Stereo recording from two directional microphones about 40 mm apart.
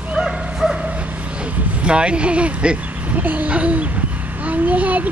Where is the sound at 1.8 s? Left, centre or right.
Right.